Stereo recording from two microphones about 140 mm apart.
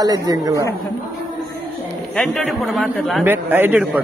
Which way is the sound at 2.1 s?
5° left (ahead or behind).